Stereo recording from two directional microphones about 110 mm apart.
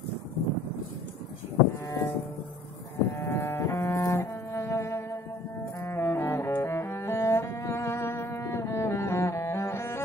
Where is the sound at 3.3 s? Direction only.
20° left (ahead or behind).